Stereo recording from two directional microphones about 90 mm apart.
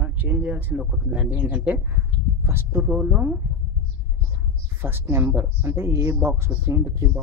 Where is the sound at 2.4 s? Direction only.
25° right (ahead or behind).